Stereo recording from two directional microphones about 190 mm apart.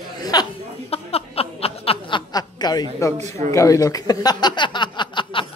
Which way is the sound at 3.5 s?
15° left (ahead or behind).